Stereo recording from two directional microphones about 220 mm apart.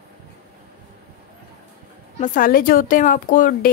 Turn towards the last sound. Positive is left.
turn(degrees=40)  # may be behind; listen again after turning